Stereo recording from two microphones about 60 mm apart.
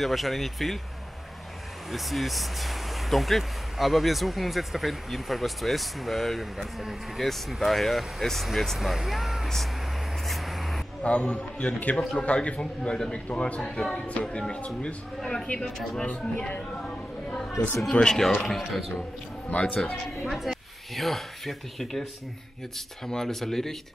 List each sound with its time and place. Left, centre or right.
0.0 s speech: centre
1.9 s speech: centre
10.2 s vehicle: centre
11.0 s a man's voice: left
12.5 s a man's voice: centre
13.6 s a man's voice: centre
15.6 s speech: centre
16.0 s a man's voice: centre
16.8 s a sound: centre
17.9 s a man's voice: centre
18.6 s speech: centre
19.5 s a man's voice: centre
20.2 s speech: centre
23.0 s a man's voice: centre